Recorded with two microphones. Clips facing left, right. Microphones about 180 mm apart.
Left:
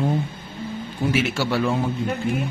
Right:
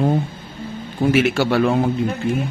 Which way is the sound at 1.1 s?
60° right (ahead or behind).